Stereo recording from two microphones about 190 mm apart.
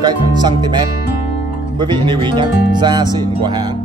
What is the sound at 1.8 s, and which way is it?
Speech, 25° right (ahead or behind).